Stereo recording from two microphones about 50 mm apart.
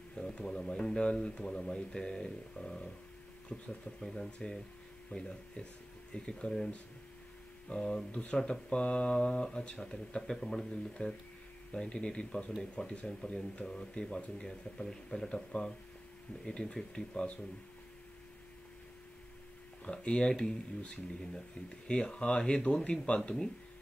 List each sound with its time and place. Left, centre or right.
0.1 s speech: centre
3.5 s speech: centre
4.0 s speech: centre
19.8 s speech: centre